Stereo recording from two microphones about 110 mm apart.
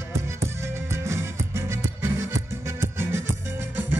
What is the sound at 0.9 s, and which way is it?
Music, 25° right (ahead or behind).